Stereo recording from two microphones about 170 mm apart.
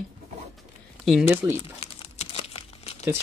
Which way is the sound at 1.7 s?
40° left (ahead or behind).